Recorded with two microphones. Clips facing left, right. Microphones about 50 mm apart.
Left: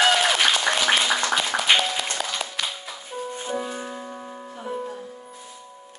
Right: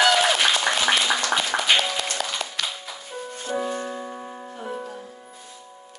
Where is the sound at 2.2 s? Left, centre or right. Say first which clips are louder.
Even; centre.